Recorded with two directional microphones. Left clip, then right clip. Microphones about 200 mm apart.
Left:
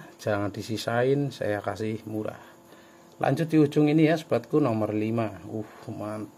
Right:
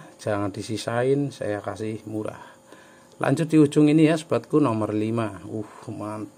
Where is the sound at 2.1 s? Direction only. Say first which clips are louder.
Right 2 dB; 15° right (ahead or behind).